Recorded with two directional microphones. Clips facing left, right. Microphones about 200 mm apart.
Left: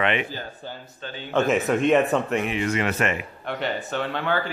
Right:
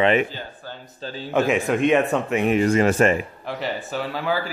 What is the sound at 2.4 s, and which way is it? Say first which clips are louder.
Speech: right 7 dB; 45° right (ahead or behind).